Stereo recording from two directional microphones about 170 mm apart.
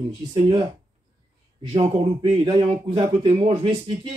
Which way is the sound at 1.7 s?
35° right (ahead or behind).